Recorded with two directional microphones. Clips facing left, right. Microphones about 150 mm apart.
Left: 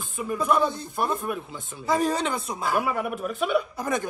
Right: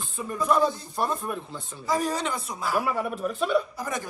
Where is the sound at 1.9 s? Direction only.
25° left (ahead or behind).